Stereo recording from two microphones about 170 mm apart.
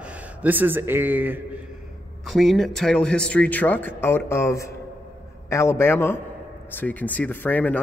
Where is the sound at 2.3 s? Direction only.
Centre (ahead or behind).